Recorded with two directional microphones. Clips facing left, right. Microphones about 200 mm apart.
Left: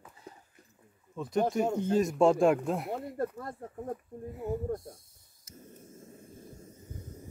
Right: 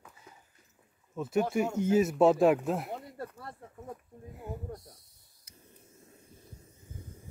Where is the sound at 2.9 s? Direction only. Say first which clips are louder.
Left 7 dB; 50° left (ahead or behind).